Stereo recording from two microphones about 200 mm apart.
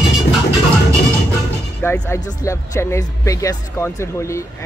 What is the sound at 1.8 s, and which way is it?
Music, 10° left (ahead or behind).